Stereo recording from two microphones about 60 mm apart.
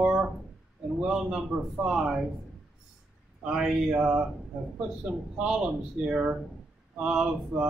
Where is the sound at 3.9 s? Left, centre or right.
Centre.